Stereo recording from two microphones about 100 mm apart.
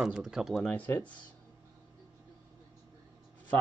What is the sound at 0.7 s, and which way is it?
Speech, 15° left (ahead or behind).